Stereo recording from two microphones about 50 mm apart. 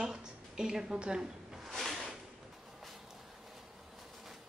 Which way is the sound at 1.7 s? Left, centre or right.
Centre.